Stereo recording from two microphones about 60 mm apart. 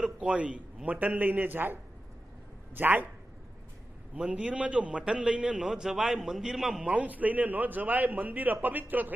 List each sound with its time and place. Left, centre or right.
0.2 s a man's voice: right
4.1 s a man's voice: right; by 6.8 s centre
6.8 s a man's voice: right